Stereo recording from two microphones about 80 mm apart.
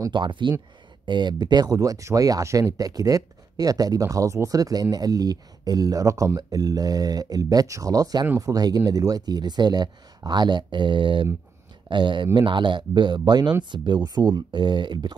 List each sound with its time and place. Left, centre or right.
0.1 s speech: right
1.0 s speech: right
11.9 s speech: right